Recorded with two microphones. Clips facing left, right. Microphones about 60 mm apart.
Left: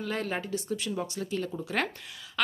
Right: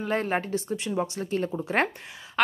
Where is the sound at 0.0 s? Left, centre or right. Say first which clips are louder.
Right 5 dB; right.